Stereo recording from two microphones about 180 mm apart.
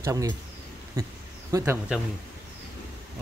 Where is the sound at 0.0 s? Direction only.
20° right (ahead or behind).